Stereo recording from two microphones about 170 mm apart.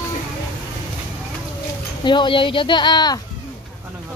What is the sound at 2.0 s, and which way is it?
Speech, 30° left (ahead or behind).